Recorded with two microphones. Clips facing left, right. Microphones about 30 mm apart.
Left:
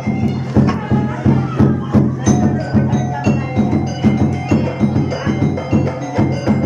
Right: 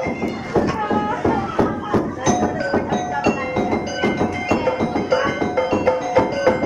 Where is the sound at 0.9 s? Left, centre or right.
Centre.